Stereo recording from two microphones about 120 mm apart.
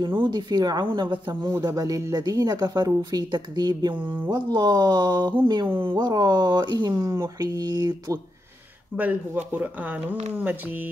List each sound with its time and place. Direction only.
0.2 s speech: 35° right (ahead or behind)
5.7 s speech: 20° right (ahead or behind)
5.9 s speech: 35° right (ahead or behind)
8.9 s speech: 15° right (ahead or behind)